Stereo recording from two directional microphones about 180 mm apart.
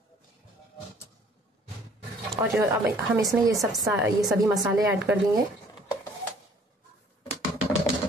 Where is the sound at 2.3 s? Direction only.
Centre (ahead or behind).